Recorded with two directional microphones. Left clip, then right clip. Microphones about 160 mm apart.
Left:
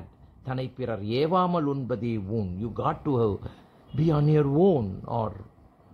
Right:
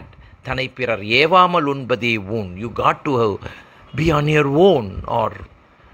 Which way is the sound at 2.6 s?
40° right (ahead or behind).